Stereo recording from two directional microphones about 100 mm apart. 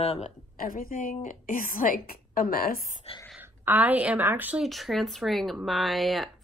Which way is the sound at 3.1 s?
75° left (ahead or behind).